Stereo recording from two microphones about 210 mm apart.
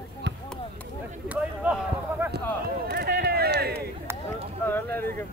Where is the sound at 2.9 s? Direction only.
50° right (ahead or behind).